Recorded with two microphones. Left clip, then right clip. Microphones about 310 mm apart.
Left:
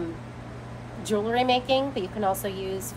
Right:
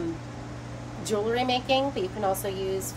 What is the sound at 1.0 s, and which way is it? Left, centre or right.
A woman's voice, centre.